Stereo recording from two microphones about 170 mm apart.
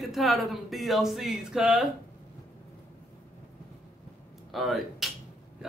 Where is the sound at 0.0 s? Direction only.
Centre (ahead or behind).